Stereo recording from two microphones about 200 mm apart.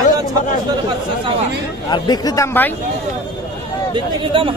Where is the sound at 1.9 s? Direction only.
20° left (ahead or behind).